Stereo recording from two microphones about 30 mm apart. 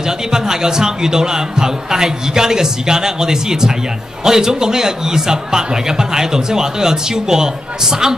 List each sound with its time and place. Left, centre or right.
0.0 s a man's voice: right